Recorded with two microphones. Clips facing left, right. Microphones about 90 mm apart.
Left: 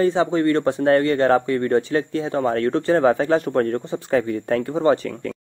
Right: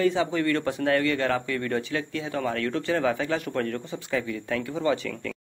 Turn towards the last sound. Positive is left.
turn(degrees=40)  # may be behind; listen again after turning